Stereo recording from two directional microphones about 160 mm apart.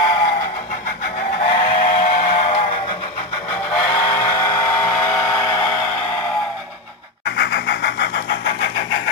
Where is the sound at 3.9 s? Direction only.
20° left (ahead or behind).